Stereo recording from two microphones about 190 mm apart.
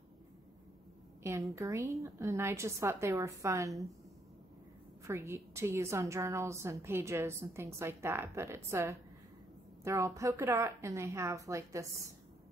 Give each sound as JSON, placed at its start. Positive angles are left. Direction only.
{"t": 1.5, "sound": "a woman's voice", "side_deg": -15}
{"t": 5.0, "sound": "a woman's voice", "side_deg": -15}